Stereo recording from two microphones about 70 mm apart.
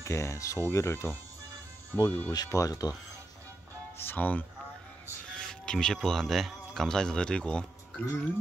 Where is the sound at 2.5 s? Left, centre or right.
Left.